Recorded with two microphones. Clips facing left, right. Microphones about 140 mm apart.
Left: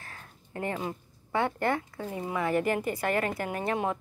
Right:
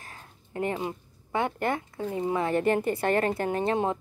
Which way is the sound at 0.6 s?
20° right (ahead or behind).